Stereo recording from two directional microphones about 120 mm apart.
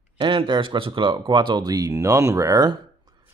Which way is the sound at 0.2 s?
45° right (ahead or behind).